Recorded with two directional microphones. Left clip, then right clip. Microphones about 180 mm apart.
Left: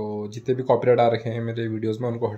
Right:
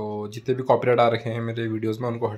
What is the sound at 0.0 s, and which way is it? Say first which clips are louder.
Speech: even; 10° left (ahead or behind).